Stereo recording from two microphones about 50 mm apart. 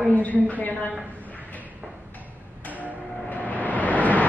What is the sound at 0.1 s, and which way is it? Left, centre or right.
Speech, left.